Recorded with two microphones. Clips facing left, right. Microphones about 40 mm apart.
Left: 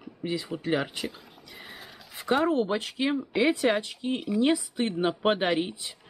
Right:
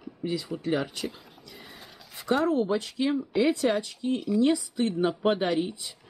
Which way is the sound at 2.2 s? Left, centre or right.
Left.